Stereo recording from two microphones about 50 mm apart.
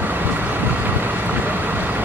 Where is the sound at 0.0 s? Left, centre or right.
Right.